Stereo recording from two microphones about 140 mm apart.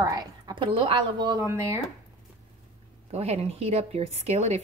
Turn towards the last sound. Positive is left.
turn(degrees=-50)  # may be behind; listen again after turning